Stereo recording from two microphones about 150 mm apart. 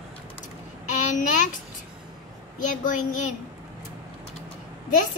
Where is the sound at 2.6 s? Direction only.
60° left (ahead or behind).